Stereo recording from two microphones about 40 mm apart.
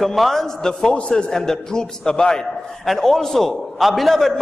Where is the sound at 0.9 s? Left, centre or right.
Left.